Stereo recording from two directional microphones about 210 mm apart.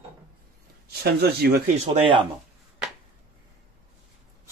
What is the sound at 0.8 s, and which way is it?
Speech, 50° right (ahead or behind).